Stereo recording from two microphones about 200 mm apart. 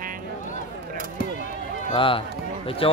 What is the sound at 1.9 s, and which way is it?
Speech, 25° left (ahead or behind).